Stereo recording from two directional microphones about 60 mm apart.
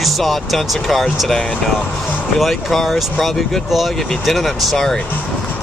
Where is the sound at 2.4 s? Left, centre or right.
Centre.